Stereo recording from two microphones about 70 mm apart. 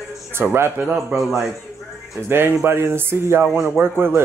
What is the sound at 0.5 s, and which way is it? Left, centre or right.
Speech, right.